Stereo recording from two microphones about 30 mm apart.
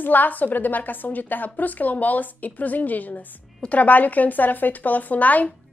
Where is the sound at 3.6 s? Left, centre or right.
Left.